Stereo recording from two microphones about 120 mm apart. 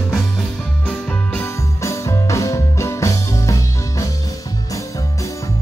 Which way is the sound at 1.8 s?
25° left (ahead or behind).